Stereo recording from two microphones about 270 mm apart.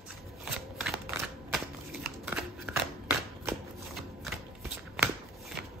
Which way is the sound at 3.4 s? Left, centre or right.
Centre.